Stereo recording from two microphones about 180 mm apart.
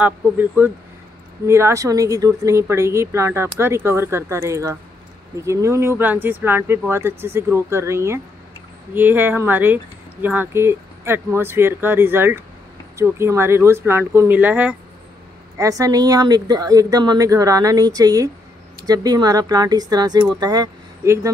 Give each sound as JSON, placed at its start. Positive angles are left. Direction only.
{"t": 0.0, "sound": "speech", "side_deg": -10}